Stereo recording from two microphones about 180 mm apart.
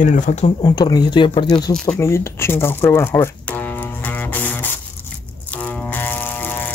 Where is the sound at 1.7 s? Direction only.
5° left (ahead or behind).